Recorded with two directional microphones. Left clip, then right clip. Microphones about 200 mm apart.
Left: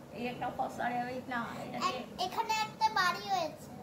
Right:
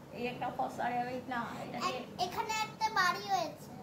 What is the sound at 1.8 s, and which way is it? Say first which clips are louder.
A child's voice: left 1 dB; 5° left (ahead or behind).